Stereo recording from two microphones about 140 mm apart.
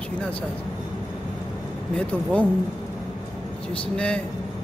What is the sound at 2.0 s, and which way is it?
Speech, 10° left (ahead or behind).